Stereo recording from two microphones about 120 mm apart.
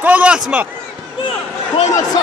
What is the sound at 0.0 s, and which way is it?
Speech, 10° right (ahead or behind).